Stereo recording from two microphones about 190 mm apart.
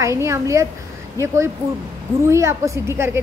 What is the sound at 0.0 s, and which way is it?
A woman's voice, 15° right (ahead or behind).